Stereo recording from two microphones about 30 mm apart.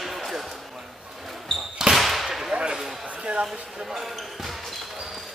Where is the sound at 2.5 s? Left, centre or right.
Right.